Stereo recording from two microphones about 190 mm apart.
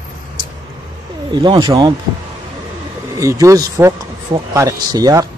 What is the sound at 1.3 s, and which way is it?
Speech, 25° right (ahead or behind).